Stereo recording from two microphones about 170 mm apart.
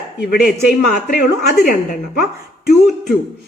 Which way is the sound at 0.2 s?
65° left (ahead or behind).